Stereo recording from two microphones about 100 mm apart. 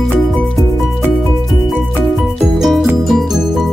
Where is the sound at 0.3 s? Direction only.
5° left (ahead or behind).